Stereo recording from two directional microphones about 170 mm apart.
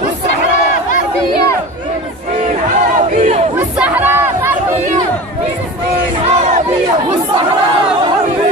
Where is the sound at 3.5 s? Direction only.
10° right (ahead or behind).